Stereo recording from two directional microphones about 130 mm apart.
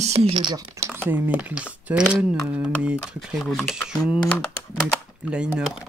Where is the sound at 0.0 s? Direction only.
55° right (ahead or behind).